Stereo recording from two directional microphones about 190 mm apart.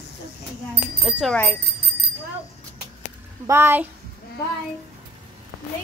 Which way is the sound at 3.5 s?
10° right (ahead or behind).